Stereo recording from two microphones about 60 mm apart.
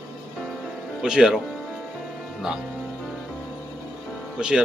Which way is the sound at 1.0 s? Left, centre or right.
Centre.